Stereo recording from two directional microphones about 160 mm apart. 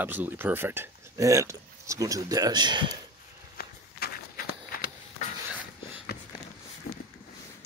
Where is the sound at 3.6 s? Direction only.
75° left (ahead or behind).